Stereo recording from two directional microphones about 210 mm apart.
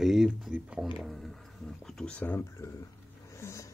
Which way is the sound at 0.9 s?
Centre (ahead or behind).